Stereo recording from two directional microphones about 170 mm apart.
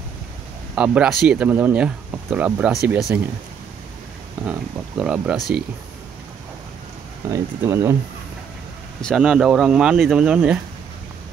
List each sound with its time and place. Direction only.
0.7 s speech: 5° right (ahead or behind)
4.5 s speech: 5° right (ahead or behind)
7.2 s speech: 20° right (ahead or behind)
9.0 s speech: 5° right (ahead or behind)